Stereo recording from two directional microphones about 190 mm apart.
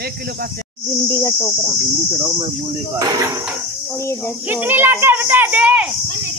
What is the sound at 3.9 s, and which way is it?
Speech, 15° left (ahead or behind).